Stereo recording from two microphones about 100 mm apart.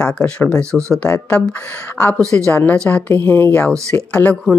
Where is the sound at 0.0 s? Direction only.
15° left (ahead or behind).